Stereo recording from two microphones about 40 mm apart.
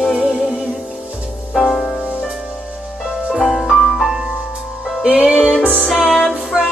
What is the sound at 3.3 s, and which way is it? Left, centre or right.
Music, centre.